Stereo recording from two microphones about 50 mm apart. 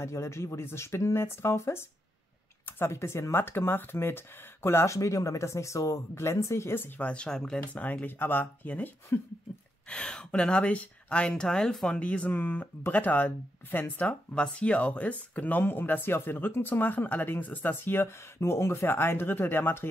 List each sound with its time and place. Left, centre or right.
0.0 s speech: left
7.0 s speech: left
7.2 s speech: centre
7.6 s speech: left
9.8 s speech: centre
12.0 s speech: left
14.3 s speech: centre; by 18.1 s left
18.4 s speech: left
18.9 s speech: left